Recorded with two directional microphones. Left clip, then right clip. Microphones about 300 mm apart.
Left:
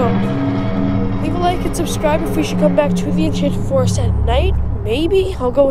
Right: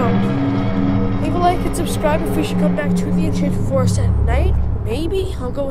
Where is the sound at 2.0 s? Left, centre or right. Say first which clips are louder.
Left 2 dB; centre.